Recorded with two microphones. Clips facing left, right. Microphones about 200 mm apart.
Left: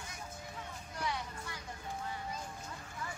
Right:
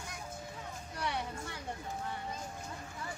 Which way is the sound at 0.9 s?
65° right (ahead or behind).